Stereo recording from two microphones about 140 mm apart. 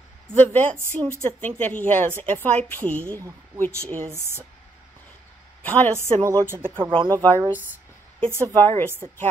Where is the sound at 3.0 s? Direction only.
20° right (ahead or behind).